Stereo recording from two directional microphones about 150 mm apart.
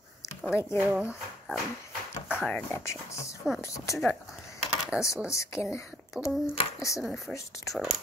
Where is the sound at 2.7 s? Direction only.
20° left (ahead or behind).